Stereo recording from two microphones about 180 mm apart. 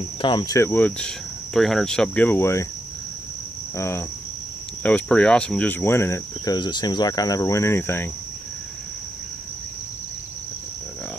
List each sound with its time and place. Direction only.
0.2 s speech: 25° left (ahead or behind)
3.7 s speech: 15° left (ahead or behind)